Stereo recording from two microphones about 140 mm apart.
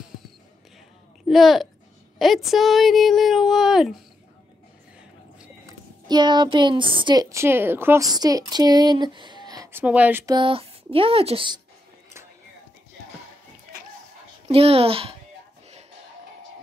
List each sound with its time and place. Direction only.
1.3 s speech: centre (ahead or behind)
5.7 s a woman's voice: 30° right (ahead or behind)
7.2 s a woman's voice: 20° right (ahead or behind)
8.1 s speech: 25° right (ahead or behind)
9.7 s speech: 15° right (ahead or behind)
10.2 s speech: 35° right (ahead or behind)
14.5 s speech: 45° right (ahead or behind)